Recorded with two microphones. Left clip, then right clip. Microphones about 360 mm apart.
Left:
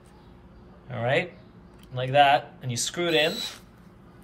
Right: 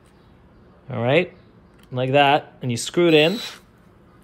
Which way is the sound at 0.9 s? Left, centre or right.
Centre.